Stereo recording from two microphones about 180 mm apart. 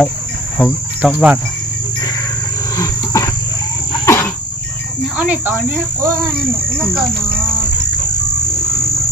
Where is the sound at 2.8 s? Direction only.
15° left (ahead or behind).